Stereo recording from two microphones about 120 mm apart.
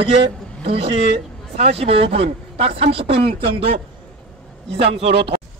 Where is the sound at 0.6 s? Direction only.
50° right (ahead or behind).